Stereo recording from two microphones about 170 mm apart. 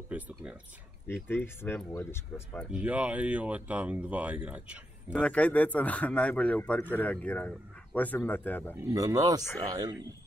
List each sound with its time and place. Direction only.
0.1 s speech: 10° right (ahead or behind)
1.2 s speech: 15° left (ahead or behind)
2.7 s speech: 10° right (ahead or behind)
5.2 s speech: 10° left (ahead or behind)
8.8 s speech: 20° right (ahead or behind)